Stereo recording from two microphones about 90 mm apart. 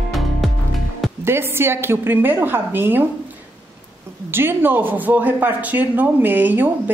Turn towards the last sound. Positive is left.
turn(degrees=-20)  # may be behind; listen again after turning